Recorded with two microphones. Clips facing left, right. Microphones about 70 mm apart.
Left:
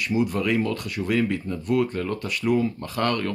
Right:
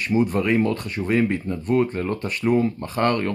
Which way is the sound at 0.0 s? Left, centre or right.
Right.